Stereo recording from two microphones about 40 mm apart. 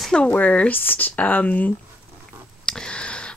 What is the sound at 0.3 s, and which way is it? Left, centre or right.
Speech, left.